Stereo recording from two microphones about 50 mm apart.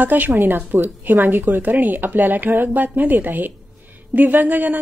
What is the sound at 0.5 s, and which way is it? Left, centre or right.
A woman's voice, right.